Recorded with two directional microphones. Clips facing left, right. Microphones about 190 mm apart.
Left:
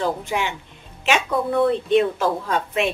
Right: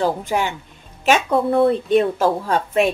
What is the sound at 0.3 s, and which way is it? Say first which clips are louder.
Speech: right 4 dB; 45° right (ahead or behind).